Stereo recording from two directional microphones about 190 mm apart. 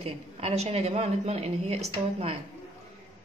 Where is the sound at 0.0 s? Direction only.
30° right (ahead or behind).